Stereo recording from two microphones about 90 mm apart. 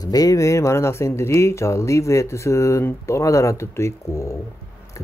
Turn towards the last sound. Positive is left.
turn(degrees=30)  # may be behind; listen again after turning